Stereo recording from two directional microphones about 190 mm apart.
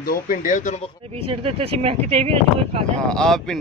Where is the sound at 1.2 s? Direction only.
30° right (ahead or behind).